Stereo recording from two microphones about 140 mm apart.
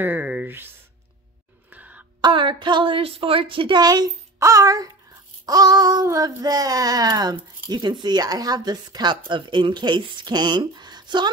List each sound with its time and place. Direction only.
0.0 s a sound: 10° right (ahead or behind)
2.2 s a woman's voice: 35° right (ahead or behind)
5.4 s child singing: 25° right (ahead or behind)